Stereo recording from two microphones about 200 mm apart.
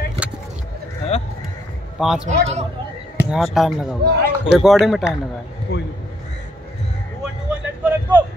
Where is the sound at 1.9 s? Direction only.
Centre (ahead or behind).